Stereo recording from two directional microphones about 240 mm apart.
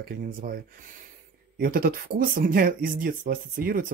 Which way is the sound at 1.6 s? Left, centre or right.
Right.